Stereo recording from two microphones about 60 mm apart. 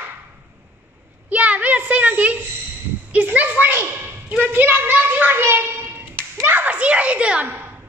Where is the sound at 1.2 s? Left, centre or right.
Right.